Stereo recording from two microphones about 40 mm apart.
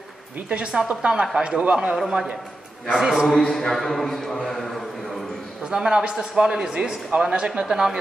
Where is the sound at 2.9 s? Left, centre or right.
Centre.